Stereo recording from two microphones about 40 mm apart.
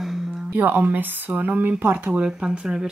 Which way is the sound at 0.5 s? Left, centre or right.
Right.